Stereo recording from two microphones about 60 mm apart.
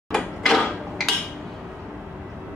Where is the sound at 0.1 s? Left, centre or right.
Centre.